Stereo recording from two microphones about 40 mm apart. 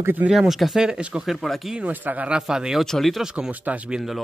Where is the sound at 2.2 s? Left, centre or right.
Centre.